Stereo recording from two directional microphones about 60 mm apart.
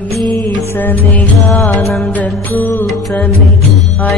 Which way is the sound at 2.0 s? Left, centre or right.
Left.